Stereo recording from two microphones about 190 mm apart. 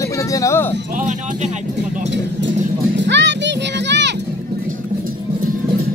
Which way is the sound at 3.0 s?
70° right (ahead or behind).